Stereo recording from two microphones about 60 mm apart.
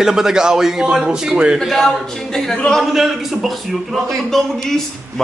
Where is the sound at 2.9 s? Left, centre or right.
Centre.